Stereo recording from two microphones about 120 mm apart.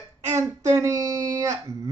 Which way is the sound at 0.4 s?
30° right (ahead or behind).